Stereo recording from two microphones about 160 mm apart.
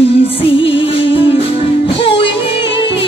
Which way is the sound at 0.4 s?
35° left (ahead or behind).